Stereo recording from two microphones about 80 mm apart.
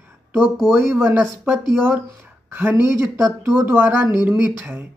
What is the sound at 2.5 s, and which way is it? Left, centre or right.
A woman's voice, right.